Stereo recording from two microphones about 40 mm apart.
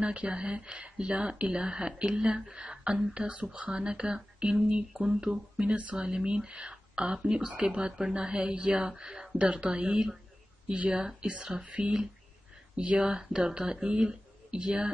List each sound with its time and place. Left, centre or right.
0.0 s speech: right